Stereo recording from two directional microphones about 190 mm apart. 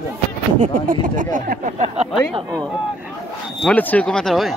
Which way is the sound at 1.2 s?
45° right (ahead or behind).